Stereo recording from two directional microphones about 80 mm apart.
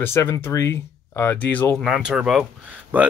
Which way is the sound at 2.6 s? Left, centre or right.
Centre.